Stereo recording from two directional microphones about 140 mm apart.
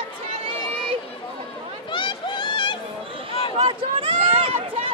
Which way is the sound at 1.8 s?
35° left (ahead or behind).